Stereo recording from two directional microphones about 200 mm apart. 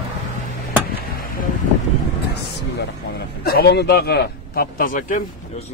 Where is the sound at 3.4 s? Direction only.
50° left (ahead or behind).